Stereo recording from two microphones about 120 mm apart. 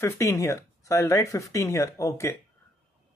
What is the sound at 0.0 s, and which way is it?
A man's voice, 25° left (ahead or behind).